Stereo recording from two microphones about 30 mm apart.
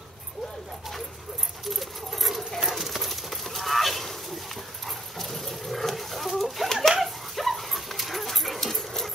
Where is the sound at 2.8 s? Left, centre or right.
Centre.